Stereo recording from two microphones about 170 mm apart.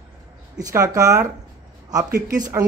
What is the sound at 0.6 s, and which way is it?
Speech, 20° right (ahead or behind).